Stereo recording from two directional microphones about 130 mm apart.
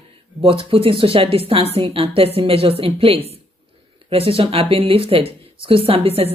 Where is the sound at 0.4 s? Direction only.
45° right (ahead or behind).